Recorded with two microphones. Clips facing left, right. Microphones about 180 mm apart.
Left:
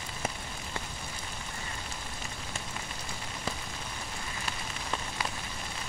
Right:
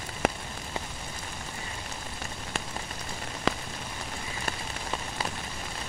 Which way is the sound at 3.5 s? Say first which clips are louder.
Right 9 dB; 90° right.